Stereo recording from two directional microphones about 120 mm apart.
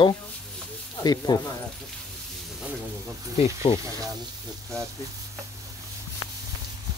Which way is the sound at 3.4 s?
50° left (ahead or behind).